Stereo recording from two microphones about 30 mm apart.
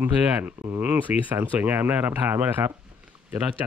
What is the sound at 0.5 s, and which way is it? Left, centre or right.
Speech, right.